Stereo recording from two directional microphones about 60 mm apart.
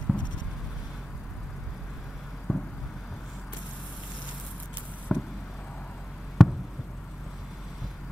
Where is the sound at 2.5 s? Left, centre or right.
Left.